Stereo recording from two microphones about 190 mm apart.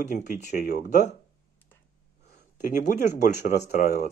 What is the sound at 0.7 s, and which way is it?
Speech, 45° left (ahead or behind).